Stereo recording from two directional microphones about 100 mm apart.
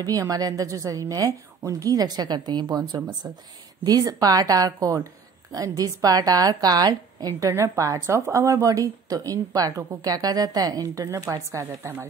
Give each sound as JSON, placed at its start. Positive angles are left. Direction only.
{"t": 0.0, "sound": "a woman's voice", "side_deg": -35}